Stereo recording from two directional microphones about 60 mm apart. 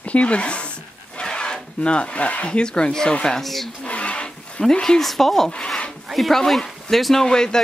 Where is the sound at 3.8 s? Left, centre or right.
Centre.